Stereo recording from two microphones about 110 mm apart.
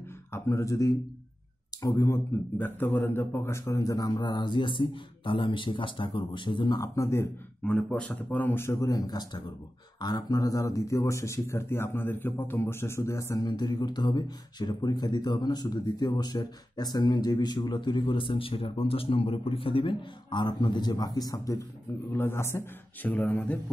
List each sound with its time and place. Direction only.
0.3 s speech: 25° left (ahead or behind)
7.6 s speech: 10° left (ahead or behind); by 13.5 s 25° left (ahead or behind)
13.5 s speech: 40° left (ahead or behind)
22.1 s speech: 20° left (ahead or behind)